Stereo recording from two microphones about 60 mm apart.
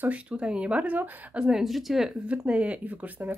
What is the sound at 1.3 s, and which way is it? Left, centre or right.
Speech, centre.